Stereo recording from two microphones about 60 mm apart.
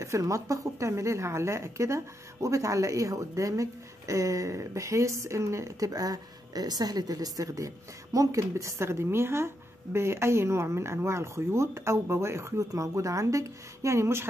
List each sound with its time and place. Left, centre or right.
0.0 s a woman's voice: right
5.9 s a woman's voice: right